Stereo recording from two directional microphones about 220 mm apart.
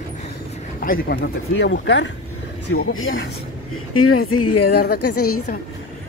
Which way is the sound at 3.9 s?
80° left.